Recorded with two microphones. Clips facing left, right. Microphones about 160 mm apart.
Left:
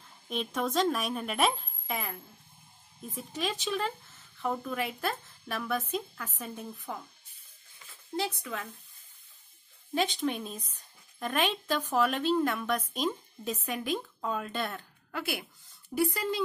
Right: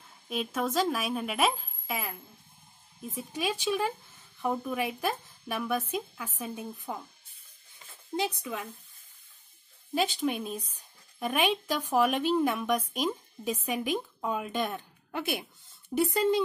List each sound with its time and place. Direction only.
0.3 s a woman's voice: 5° right (ahead or behind)
3.2 s speech: 10° right (ahead or behind)
8.2 s speech: 15° right (ahead or behind)
9.9 s speech: 10° right (ahead or behind)